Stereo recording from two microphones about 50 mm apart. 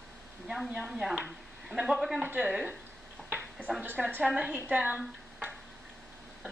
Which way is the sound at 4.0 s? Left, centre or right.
Centre.